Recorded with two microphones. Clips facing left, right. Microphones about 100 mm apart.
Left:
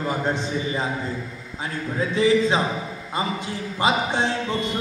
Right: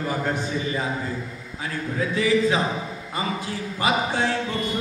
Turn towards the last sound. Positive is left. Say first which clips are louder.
# left 1 dB
turn(degrees=25)  # may be behind; listen again after turning